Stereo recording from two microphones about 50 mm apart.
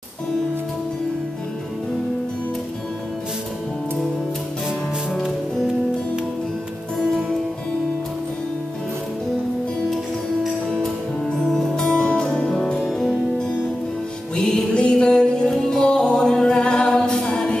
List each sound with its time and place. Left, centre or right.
10.4 s music: centre
11.9 s music: left
12.8 s music: centre
14.3 s music: centre